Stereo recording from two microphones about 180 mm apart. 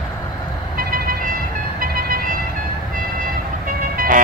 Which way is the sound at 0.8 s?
55° right (ahead or behind).